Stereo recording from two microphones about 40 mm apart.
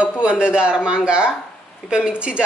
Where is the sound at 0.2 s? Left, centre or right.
Right.